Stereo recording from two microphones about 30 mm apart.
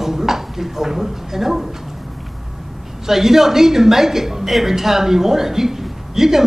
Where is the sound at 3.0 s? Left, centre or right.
Centre.